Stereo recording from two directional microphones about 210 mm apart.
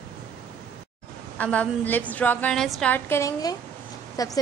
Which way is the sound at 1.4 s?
5° left (ahead or behind).